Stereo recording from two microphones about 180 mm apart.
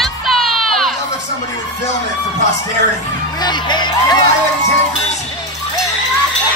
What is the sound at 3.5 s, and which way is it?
Music, 25° left (ahead or behind).